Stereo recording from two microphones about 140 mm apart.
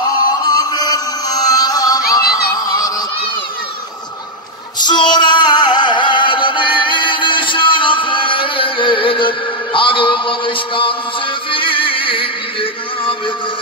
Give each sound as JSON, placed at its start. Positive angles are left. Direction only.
{"t": 0.2, "sound": "chant", "side_deg": 30}
{"t": 2.6, "sound": "a sound", "side_deg": 25}
{"t": 4.7, "sound": "female singing", "side_deg": 30}
{"t": 11.5, "sound": "music", "side_deg": 40}